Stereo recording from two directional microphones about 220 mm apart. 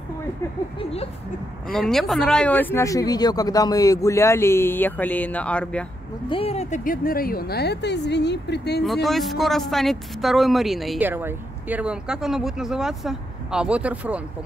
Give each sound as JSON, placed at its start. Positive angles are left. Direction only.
{"t": 1.7, "sound": "speech", "side_deg": 0}
{"t": 6.2, "sound": "speech", "side_deg": 25}
{"t": 9.0, "sound": "speech", "side_deg": 0}